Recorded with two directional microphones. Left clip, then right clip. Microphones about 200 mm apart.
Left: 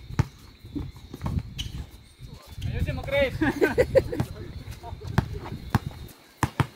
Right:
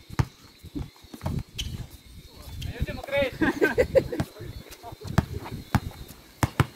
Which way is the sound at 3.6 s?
15° left (ahead or behind).